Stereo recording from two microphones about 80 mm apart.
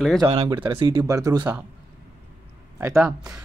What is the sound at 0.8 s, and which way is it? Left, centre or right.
Speech, right.